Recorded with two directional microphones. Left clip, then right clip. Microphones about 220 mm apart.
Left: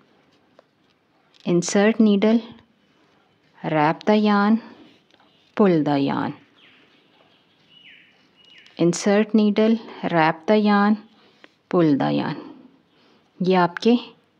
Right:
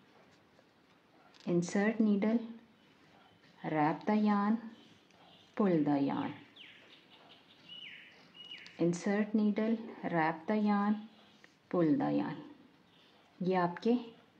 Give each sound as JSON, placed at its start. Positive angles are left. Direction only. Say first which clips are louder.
{"t": 1.4, "sound": "speech", "louder": "left 14 dB", "side_deg": 45}
{"t": 3.6, "sound": "speech", "louder": "left 13 dB", "side_deg": 45}
{"t": 8.6, "sound": "speech", "louder": "left 14 dB", "side_deg": 45}
{"t": 13.4, "sound": "speech", "louder": "left 14 dB", "side_deg": 45}